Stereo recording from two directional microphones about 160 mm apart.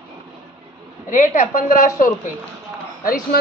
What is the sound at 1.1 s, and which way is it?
Speech, 55° left (ahead or behind).